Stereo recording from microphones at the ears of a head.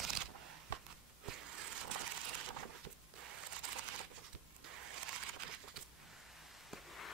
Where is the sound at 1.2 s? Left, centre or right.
Right.